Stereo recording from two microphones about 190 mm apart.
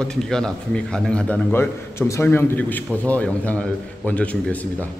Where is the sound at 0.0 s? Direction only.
5° left (ahead or behind).